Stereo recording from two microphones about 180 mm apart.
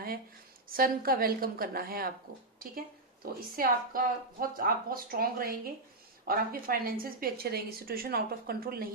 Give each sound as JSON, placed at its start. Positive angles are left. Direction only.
{"t": 0.7, "sound": "a woman's voice", "side_deg": -55}